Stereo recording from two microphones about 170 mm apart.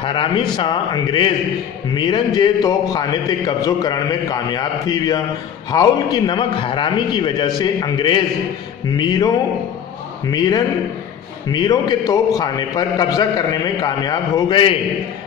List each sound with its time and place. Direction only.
0.0 s a man's voice: 30° left (ahead or behind)
10.3 s a man's voice: 25° left (ahead or behind)